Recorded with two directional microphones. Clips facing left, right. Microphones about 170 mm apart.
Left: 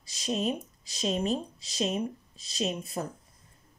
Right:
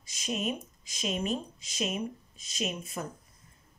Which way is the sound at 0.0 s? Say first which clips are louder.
Left 3 dB; 35° left (ahead or behind).